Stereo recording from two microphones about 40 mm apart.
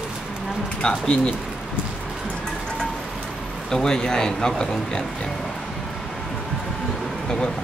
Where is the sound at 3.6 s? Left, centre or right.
Centre.